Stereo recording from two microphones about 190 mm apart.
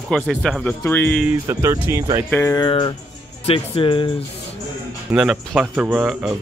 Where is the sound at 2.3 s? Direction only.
20° left (ahead or behind).